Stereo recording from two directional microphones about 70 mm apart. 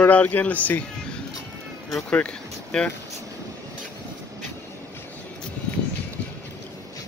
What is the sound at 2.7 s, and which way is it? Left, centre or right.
Speech, centre.